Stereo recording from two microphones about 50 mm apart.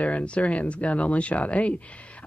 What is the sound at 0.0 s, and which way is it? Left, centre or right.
Speech, left.